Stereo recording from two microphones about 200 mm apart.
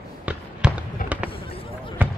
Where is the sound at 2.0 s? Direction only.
10° right (ahead or behind).